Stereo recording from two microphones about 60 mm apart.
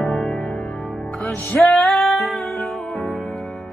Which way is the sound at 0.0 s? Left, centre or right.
Centre.